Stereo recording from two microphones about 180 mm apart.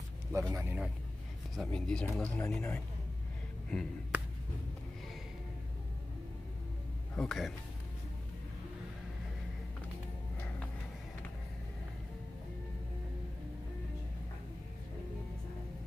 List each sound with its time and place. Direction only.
0.3 s a man's voice: 15° right (ahead or behind)
1.6 s speech: 5° left (ahead or behind)
4.1 s a sound: 10° right (ahead or behind)
7.2 s speech: centre (ahead or behind)